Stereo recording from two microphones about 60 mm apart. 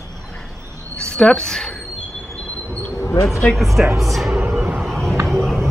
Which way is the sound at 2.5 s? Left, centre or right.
Right.